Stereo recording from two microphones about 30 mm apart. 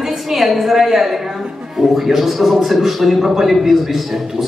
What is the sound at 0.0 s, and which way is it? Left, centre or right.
A woman's voice, centre.